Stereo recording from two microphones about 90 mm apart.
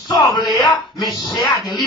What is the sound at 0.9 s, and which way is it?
Music, 45° left (ahead or behind).